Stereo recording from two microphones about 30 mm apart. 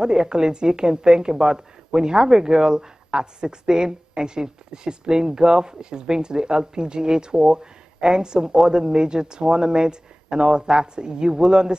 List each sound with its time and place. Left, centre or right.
0.0 s speech: right